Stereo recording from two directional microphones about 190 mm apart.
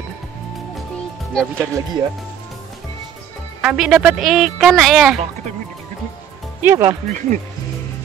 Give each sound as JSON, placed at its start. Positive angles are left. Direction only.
{"t": 0.9, "sound": "music", "side_deg": 5}
{"t": 1.6, "sound": "speech", "side_deg": -15}
{"t": 3.6, "sound": "speech", "side_deg": -5}
{"t": 6.6, "sound": "speech", "side_deg": -15}
{"t": 7.1, "sound": "speech", "side_deg": -40}